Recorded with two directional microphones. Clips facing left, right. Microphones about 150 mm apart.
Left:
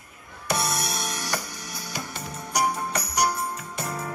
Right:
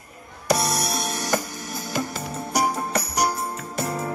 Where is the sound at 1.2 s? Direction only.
50° right (ahead or behind).